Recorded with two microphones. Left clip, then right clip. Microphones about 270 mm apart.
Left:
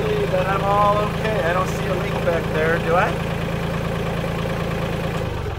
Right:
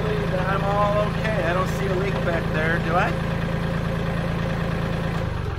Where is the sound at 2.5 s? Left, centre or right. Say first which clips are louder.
Left 4 dB; centre.